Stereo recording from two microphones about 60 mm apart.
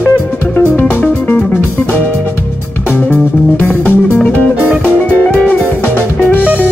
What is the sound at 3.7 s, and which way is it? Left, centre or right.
Music, left.